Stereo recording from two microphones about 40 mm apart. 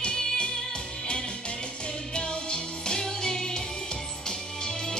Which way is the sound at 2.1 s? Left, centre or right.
Left.